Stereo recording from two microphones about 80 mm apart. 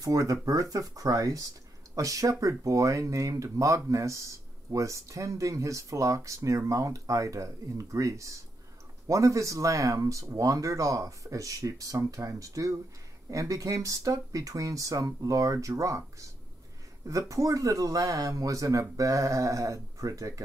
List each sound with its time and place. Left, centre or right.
0.0 s speech: right